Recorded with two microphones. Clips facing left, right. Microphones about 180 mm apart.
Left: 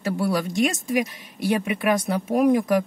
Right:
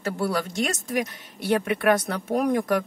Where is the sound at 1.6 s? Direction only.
10° left (ahead or behind).